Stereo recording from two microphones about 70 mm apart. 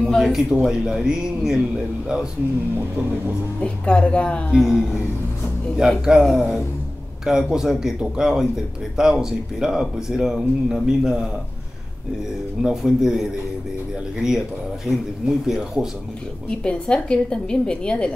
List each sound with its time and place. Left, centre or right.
0.0 s speech: centre
3.6 s a woman's voice: centre
4.5 s a sound: centre
5.8 s speech: centre
12.6 s speech: centre
16.4 s a woman's voice: centre